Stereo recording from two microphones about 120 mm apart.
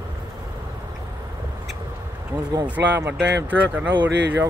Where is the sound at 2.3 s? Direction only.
20° right (ahead or behind).